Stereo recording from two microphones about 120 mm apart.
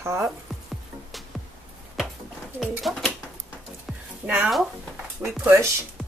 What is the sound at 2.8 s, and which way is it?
Speech, 5° left (ahead or behind).